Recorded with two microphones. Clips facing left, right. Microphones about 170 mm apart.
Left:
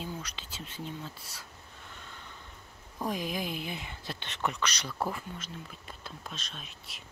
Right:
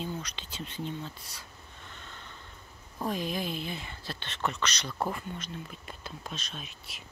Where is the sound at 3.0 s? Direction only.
10° left (ahead or behind).